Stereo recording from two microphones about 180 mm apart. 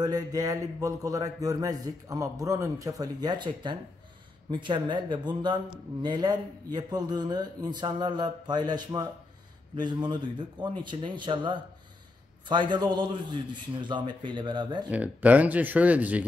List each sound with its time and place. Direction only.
0.0 s a man's voice: 20° right (ahead or behind)
14.9 s speech: 10° right (ahead or behind)